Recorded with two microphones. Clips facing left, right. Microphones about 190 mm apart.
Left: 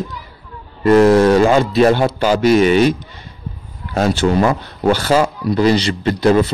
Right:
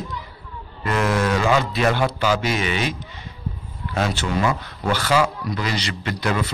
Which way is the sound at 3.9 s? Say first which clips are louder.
Left 8 dB; 40° left (ahead or behind).